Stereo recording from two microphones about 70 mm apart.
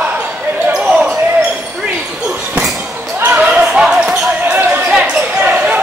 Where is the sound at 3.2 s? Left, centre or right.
Centre.